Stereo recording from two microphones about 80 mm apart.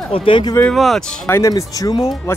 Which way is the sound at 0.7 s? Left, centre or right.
Centre.